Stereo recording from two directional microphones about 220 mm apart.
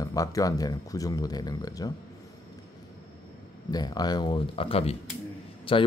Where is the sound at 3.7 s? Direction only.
20° left (ahead or behind).